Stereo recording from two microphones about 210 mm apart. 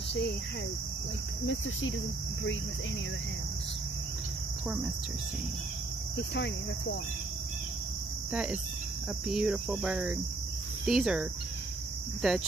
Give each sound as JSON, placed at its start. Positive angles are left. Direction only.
{"t": 1.4, "sound": "cricket", "side_deg": 65}
{"t": 8.3, "sound": "speech", "side_deg": -5}
{"t": 9.3, "sound": "cricket", "side_deg": -5}